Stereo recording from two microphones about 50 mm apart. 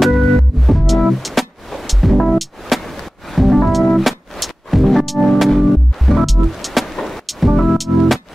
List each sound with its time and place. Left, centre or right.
0.0 s music: centre